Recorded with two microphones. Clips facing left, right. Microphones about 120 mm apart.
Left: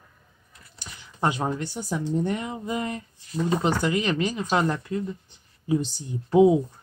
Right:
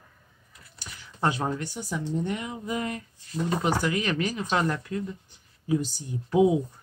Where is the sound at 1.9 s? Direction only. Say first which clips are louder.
Left 4 dB; 40° left (ahead or behind).